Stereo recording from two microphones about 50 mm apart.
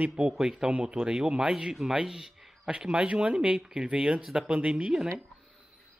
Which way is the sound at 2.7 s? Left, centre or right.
Right.